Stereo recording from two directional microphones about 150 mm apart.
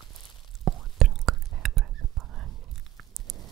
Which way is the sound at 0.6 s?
Centre (ahead or behind).